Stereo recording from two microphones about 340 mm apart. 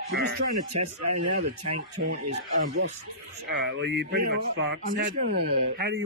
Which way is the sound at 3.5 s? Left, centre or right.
Right.